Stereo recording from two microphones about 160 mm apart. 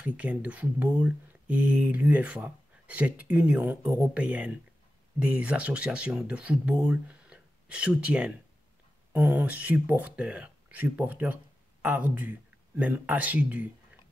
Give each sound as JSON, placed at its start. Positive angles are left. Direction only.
{"t": 0.0, "sound": "speech", "side_deg": -10}